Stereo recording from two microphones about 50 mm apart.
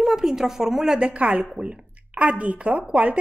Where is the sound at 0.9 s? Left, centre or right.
Right.